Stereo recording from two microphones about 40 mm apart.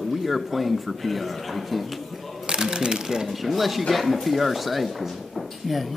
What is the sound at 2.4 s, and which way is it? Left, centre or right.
Speech, centre.